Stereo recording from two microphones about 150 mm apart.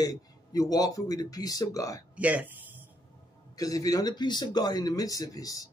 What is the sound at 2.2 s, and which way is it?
Speech, 10° right (ahead or behind).